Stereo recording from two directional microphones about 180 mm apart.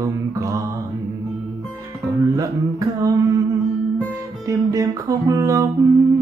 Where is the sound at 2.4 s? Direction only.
20° right (ahead or behind).